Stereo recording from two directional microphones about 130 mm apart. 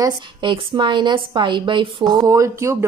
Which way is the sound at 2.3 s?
25° right (ahead or behind).